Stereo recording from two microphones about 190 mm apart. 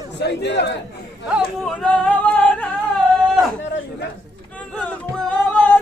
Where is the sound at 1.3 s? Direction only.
Centre (ahead or behind).